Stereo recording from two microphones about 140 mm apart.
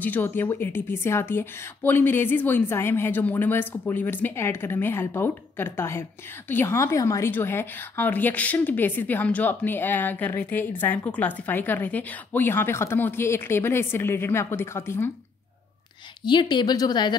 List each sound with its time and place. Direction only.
0.0 s a woman's voice: 15° left (ahead or behind)
16.3 s a woman's voice: 35° left (ahead or behind)